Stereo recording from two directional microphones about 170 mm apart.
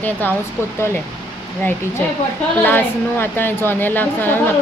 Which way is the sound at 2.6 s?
10° left (ahead or behind).